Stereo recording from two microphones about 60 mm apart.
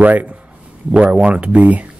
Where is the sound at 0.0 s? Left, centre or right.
Right.